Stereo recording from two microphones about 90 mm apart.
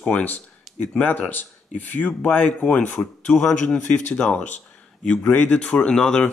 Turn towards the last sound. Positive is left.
turn(degrees=10)  # may be behind; listen again after turning